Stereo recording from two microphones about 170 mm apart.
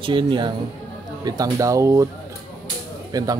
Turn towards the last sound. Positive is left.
turn(degrees=-20)  # may be behind; listen again after turning